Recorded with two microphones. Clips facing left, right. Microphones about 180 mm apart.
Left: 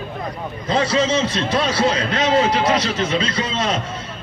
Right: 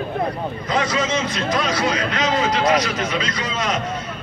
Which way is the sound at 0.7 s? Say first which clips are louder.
Left 4 dB; 30° left (ahead or behind).